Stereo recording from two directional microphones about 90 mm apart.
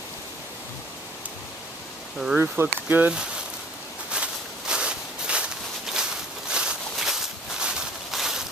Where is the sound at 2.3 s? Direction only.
20° right (ahead or behind).